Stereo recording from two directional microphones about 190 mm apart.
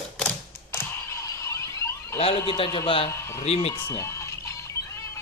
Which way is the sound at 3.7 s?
15° left (ahead or behind).